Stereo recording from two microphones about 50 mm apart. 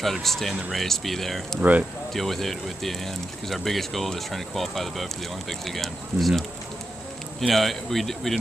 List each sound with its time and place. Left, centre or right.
0.0 s speech: centre
1.6 s speech: right
2.1 s speech: centre